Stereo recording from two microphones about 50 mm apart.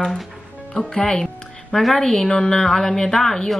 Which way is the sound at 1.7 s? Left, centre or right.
Centre.